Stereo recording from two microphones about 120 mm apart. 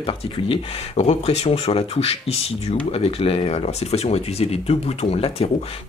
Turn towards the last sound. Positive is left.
turn(degrees=55)  # may be behind; listen again after turning